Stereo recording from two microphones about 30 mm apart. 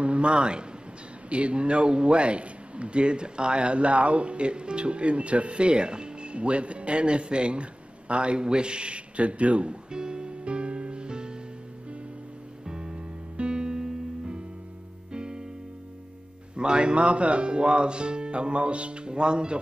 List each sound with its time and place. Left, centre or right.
0.0 s a man's voice: right
9.9 s music: right
12.6 s music: right
16.5 s a man's voice: right